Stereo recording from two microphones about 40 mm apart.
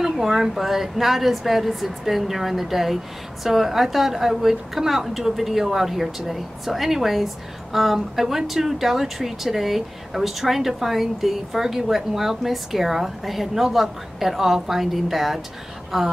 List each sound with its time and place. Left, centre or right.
0.0 s a woman's voice: centre